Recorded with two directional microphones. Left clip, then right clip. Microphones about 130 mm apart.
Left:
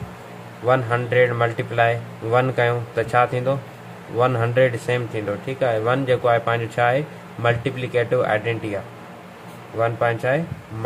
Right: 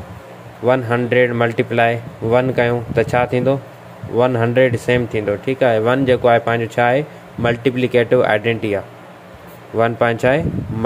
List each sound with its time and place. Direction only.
0.7 s speech: 50° right (ahead or behind)
9.8 s speech: 70° right (ahead or behind)